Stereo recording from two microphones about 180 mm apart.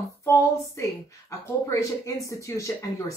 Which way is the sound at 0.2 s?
15° left (ahead or behind).